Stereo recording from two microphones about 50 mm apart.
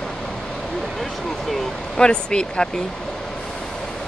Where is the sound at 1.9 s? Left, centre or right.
Centre.